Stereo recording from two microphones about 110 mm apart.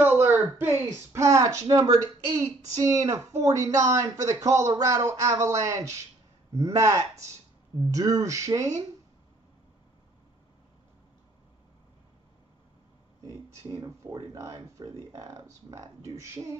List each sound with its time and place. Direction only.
0.0 s speech: 15° right (ahead or behind)
13.7 s speech: 40° right (ahead or behind)